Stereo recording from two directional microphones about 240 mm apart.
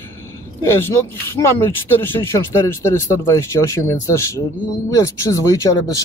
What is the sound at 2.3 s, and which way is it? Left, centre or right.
Speech, centre.